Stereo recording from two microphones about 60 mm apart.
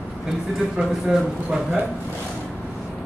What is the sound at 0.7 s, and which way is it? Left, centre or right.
Speech, centre.